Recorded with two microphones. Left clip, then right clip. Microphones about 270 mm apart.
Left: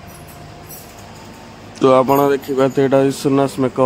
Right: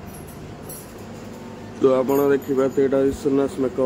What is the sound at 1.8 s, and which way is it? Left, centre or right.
Speech, left.